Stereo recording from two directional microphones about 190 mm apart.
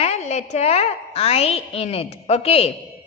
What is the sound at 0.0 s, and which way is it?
A woman's voice, 35° left (ahead or behind).